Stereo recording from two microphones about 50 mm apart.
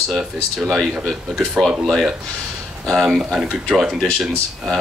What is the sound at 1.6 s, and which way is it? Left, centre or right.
Speech, centre.